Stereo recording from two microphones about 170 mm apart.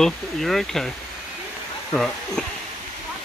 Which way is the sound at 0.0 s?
Centre (ahead or behind).